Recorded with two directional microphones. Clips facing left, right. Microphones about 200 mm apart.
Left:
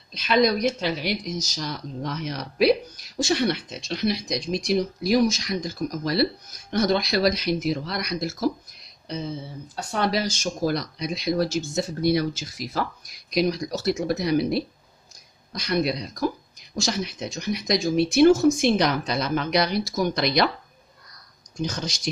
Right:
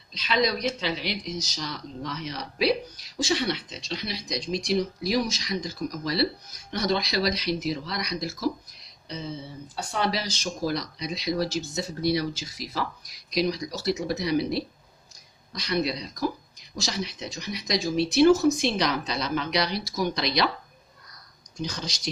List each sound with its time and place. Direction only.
0.1 s speech: 50° left (ahead or behind)
9.9 s speech: 50° left (ahead or behind)
21.5 s speech: 50° left (ahead or behind)